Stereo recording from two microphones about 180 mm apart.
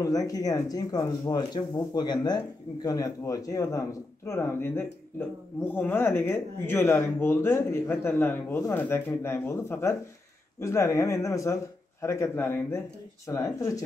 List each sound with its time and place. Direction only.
0.0 s speech: 20° left (ahead or behind)